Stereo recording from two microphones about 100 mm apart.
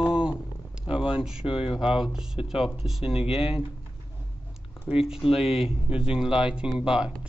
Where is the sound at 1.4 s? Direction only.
65° left (ahead or behind).